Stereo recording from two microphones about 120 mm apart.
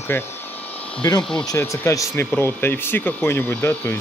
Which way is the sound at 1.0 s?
30° left (ahead or behind).